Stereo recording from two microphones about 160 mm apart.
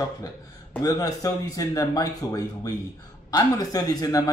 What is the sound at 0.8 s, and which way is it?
Speech, 20° left (ahead or behind).